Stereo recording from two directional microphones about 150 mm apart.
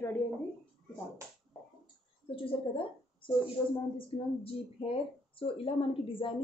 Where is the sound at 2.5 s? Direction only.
35° left (ahead or behind).